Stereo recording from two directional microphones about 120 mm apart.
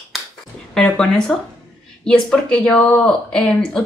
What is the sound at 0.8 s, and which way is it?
Speech, 5° left (ahead or behind).